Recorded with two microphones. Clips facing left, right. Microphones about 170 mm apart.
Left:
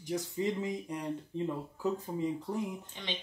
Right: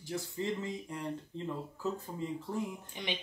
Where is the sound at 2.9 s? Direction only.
10° right (ahead or behind).